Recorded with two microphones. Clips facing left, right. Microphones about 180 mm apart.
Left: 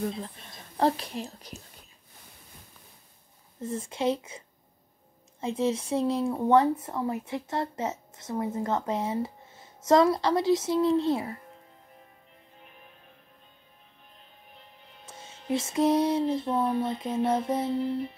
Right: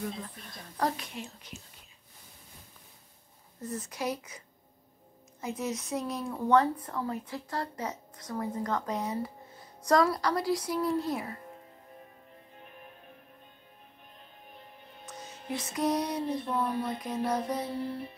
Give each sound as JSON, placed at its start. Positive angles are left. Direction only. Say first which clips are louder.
{"t": 0.5, "sound": "speech", "louder": "left 6 dB", "side_deg": 30}
{"t": 3.6, "sound": "speech", "louder": "left 6 dB", "side_deg": 25}
{"t": 5.4, "sound": "speech", "louder": "left 7 dB", "side_deg": 30}
{"t": 15.0, "sound": "speech", "louder": "left 6 dB", "side_deg": 25}